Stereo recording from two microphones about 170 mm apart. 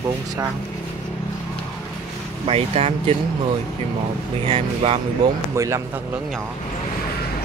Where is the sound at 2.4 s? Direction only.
35° right (ahead or behind).